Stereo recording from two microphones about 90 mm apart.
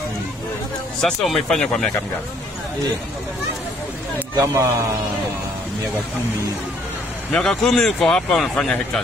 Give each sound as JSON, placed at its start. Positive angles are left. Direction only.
{"t": 1.0, "sound": "speech", "side_deg": 5}
{"t": 4.4, "sound": "speech", "side_deg": -35}
{"t": 7.3, "sound": "speech", "side_deg": 5}